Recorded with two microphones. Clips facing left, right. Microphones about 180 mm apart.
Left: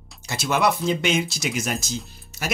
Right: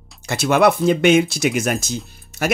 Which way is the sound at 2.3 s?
60° right (ahead or behind).